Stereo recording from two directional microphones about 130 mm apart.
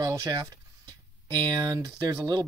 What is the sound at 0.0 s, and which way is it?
Speech, 30° right (ahead or behind).